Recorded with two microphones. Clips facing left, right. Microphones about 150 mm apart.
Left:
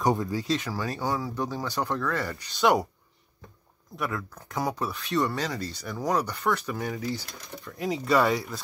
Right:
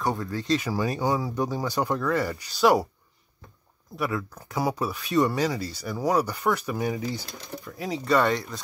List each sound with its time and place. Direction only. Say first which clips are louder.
0.0 s speech: left 3 dB; 15° left (ahead or behind)
0.7 s speech: right 4 dB; 15° right (ahead or behind)
3.9 s speech: right 3 dB; 5° right (ahead or behind); by 7.7 s 20° right (ahead or behind)
7.7 s speech: even; centre (ahead or behind)